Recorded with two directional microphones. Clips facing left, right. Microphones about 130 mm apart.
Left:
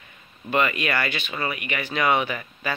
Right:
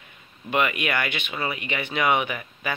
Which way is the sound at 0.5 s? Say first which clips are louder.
Left 1 dB; 15° right (ahead or behind).